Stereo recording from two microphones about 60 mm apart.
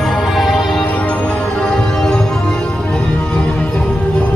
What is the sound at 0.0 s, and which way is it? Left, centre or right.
Music, centre.